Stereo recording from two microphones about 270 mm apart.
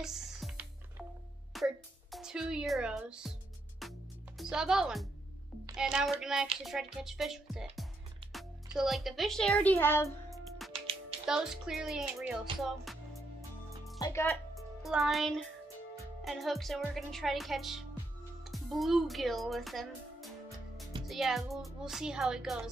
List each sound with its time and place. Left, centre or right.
0.0 s music: centre
1.5 s speech: centre
3.8 s music: centre
4.4 s speech: centre
10.7 s music: right
11.2 s speech: centre
12.5 s music: centre
13.9 s speech: centre
14.8 s speech: centre